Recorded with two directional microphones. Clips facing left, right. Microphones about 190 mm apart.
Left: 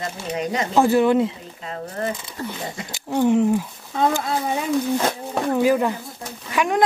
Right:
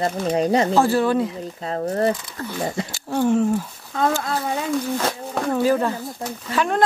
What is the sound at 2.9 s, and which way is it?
Speech, 15° left (ahead or behind).